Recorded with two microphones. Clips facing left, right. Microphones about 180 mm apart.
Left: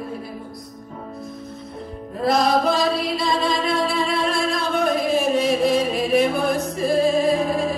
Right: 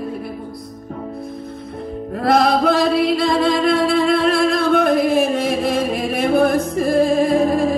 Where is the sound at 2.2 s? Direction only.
60° right (ahead or behind).